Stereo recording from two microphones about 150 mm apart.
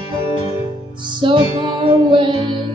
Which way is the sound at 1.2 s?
35° right (ahead or behind).